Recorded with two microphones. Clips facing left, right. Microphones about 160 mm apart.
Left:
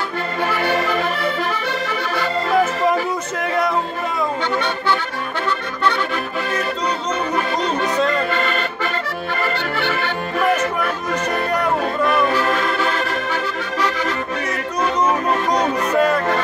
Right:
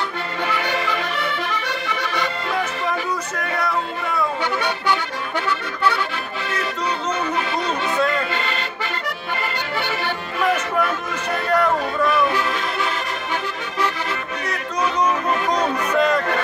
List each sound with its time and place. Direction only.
8.4 s accordion: 50° left (ahead or behind)
9.8 s music: 15° right (ahead or behind)
12.4 s music: 45° left (ahead or behind)
15.9 s a sound: 5° left (ahead or behind)